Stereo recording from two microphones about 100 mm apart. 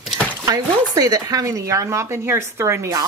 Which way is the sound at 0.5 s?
35° right (ahead or behind).